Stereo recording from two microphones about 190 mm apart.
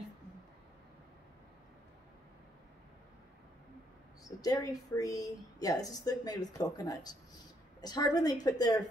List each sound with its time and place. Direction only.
4.2 s a woman's voice: 20° left (ahead or behind)